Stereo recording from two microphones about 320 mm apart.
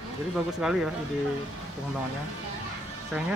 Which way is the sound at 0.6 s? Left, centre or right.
Centre.